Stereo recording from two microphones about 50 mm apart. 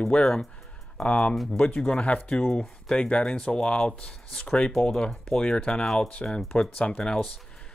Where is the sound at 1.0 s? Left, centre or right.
Left.